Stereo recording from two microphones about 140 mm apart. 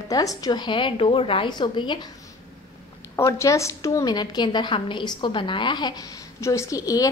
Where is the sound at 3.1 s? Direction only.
20° left (ahead or behind).